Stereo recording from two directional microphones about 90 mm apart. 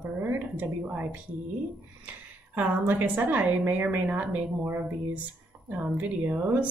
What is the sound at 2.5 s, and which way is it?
Speech, 15° right (ahead or behind).